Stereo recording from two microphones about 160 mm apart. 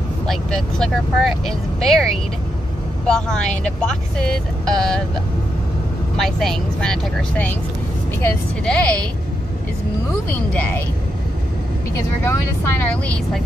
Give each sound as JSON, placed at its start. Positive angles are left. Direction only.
{"t": 0.3, "sound": "speech", "side_deg": 5}
{"t": 3.1, "sound": "speech", "side_deg": 5}
{"t": 6.1, "sound": "speech", "side_deg": 5}
{"t": 10.5, "sound": "speech", "side_deg": 10}
{"t": 12.2, "sound": "speech", "side_deg": 15}